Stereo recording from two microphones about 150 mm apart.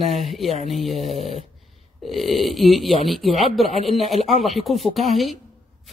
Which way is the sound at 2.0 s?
Centre (ahead or behind).